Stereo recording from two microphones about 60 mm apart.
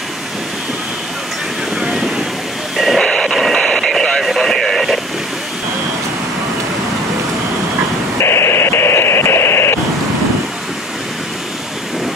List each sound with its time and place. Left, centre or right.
1.8 s vehicle: centre
2.8 s a sound: centre
3.1 s radio: centre
8.2 s radio: left